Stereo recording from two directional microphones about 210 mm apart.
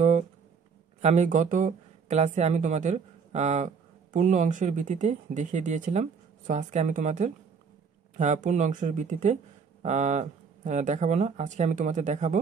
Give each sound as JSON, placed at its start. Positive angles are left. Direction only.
{"t": 1.0, "sound": "speech", "side_deg": -35}